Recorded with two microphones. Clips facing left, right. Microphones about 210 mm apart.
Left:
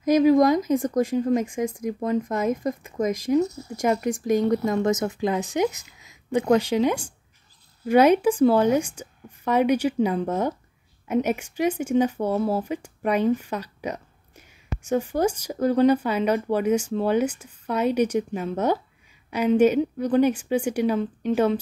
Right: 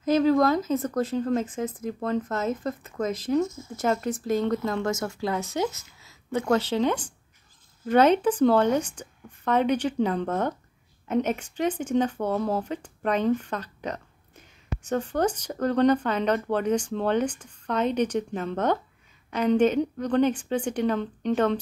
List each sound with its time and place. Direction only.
0.0 s speech: 15° left (ahead or behind)
3.3 s speech: 40° left (ahead or behind)
3.7 s speech: 15° left (ahead or behind)